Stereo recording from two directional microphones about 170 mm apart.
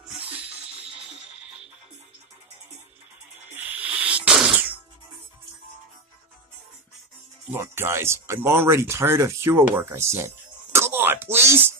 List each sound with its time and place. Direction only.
0.2 s music: 10° right (ahead or behind)
3.5 s sneeze: 10° right (ahead or behind)
7.5 s speech: 15° right (ahead or behind)